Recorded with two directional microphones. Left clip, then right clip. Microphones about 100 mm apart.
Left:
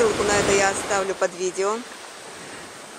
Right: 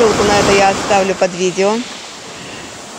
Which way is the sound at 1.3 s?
5° left (ahead or behind).